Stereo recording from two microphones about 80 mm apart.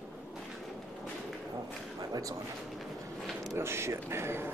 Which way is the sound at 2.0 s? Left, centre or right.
Right.